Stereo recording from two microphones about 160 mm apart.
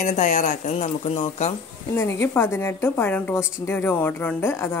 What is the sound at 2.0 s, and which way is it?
A woman's voice, 15° left (ahead or behind).